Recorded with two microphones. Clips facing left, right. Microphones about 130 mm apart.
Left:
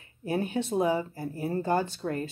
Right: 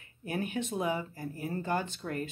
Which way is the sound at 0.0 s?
30° left (ahead or behind).